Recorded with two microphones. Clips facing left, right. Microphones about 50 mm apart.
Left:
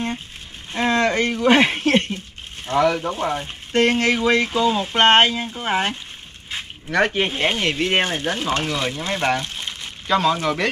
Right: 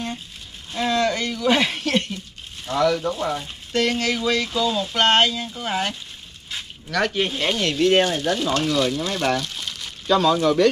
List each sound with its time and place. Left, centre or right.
0.7 s speech: left